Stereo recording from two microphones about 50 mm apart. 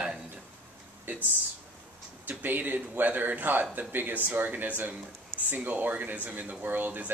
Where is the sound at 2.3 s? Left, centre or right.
Right.